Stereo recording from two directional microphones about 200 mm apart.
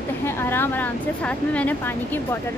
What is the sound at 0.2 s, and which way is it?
Speech, 10° left (ahead or behind).